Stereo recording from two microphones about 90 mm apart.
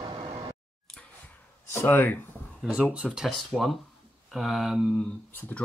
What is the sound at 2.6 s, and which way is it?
Speech, 10° right (ahead or behind).